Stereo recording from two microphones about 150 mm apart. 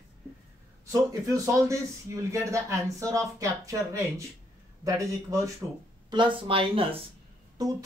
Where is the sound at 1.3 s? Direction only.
20° right (ahead or behind).